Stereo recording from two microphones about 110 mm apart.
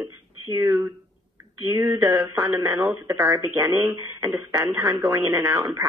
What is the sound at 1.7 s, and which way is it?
Speech, 30° right (ahead or behind).